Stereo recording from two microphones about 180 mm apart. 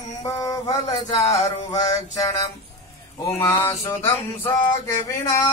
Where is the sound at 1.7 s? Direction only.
20° left (ahead or behind).